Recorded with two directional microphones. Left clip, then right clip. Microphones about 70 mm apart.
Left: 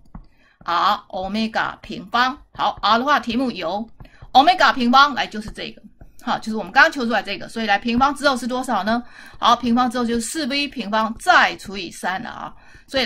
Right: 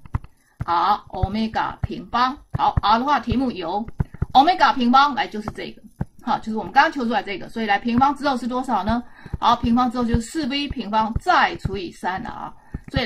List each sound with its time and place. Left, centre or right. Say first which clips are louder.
0.7 s a woman's voice: left 1 dB; left